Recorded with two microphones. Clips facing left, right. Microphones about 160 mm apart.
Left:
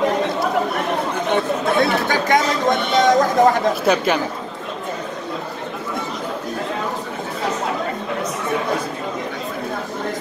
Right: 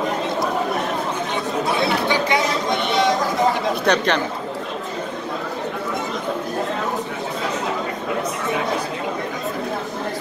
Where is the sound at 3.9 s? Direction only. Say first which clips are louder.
Left 1 dB; 5° left (ahead or behind).